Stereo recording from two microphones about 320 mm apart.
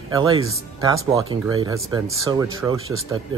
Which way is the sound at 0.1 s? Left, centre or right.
Centre.